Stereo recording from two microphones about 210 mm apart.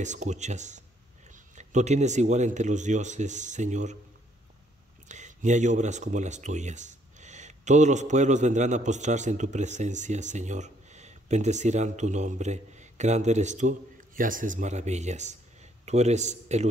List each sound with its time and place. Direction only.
0.0 s speech: 35° right (ahead or behind)
5.0 s speech: 35° right (ahead or behind)